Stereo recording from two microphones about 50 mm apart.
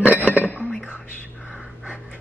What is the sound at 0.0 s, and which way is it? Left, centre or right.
Chink, right.